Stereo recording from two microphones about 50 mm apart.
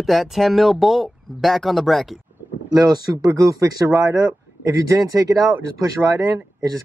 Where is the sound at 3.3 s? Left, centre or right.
Right.